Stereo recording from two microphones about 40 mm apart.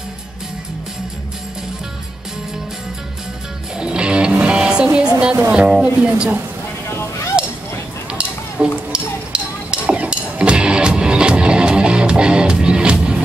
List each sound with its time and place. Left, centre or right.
3.8 s music: right
5.7 s speech: right
7.3 s a sound: right
8.1 s stir: right
10.4 s music: right